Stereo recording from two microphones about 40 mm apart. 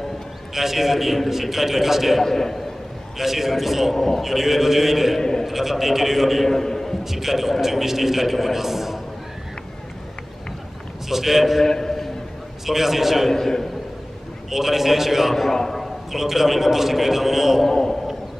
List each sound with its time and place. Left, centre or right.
0.6 s a man's voice: centre
2.2 s a man's voice: centre
3.2 s a man's voice: centre
4.3 s a man's voice: centre
5.2 s a sound: centre
5.5 s a man's voice: centre
6.4 s a man's voice: centre
7.1 s a man's voice: centre
11.1 s a man's voice: centre
11.6 s a sound: centre
12.6 s a man's voice: centre
13.3 s a man's voice: centre
14.5 s a man's voice: centre
17.6 s a sound: centre